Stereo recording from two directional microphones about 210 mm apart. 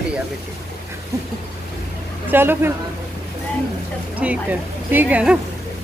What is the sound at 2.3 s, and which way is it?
Speech, 10° right (ahead or behind).